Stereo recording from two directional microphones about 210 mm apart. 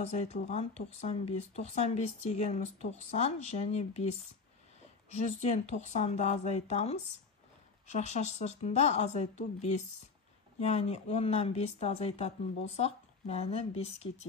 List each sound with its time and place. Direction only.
0.0 s speech: 30° left (ahead or behind)
5.1 s speech: 30° left (ahead or behind)